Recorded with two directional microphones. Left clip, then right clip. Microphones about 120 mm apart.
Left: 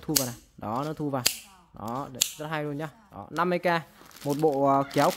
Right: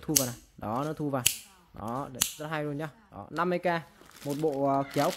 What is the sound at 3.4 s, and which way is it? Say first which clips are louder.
Speech: left 3 dB; 25° left (ahead or behind).